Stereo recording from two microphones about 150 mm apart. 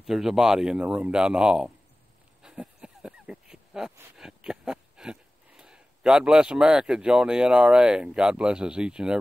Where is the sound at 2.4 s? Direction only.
5° right (ahead or behind).